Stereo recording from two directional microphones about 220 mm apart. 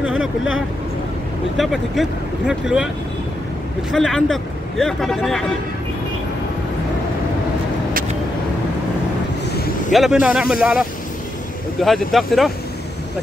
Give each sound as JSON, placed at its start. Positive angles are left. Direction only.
{"t": 0.0, "sound": "vehicle", "side_deg": -5}
{"t": 1.6, "sound": "speech", "side_deg": 0}
{"t": 3.9, "sound": "speech", "side_deg": 0}
{"t": 9.5, "sound": "vehicle", "side_deg": 45}
{"t": 9.9, "sound": "speech", "side_deg": -5}